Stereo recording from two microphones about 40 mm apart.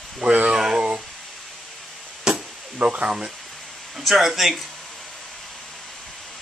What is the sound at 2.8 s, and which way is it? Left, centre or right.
Speech, right.